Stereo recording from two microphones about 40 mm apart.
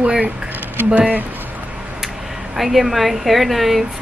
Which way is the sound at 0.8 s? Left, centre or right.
Right.